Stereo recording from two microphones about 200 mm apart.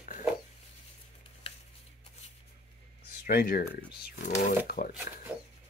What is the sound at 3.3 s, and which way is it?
Speech, 45° left (ahead or behind).